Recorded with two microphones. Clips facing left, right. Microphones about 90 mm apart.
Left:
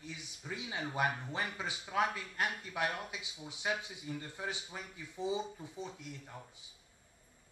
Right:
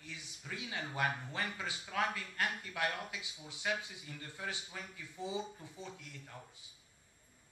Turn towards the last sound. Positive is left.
turn(degrees=20)  # may be behind; listen again after turning